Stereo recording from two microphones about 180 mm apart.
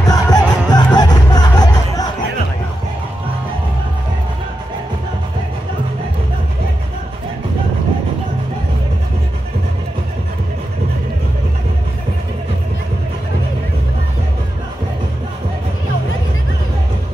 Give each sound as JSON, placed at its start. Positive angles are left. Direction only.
{"t": 0.0, "sound": "music", "side_deg": 20}